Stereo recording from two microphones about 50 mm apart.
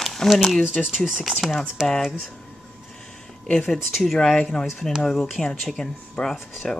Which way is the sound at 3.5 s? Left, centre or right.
Centre.